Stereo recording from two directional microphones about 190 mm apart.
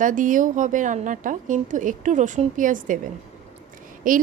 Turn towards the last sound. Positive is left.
turn(degrees=-45)  # may be behind; listen again after turning